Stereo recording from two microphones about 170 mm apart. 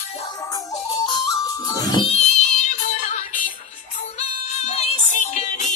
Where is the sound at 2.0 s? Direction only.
40° left (ahead or behind).